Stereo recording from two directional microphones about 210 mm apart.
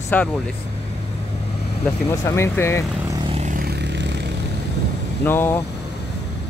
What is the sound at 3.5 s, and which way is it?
Vehicle, 50° right (ahead or behind).